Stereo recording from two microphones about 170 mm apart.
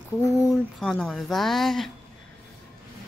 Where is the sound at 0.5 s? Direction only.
Centre (ahead or behind).